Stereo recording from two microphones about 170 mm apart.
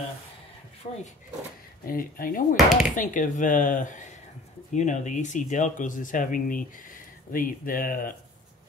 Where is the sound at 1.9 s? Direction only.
55° left (ahead or behind).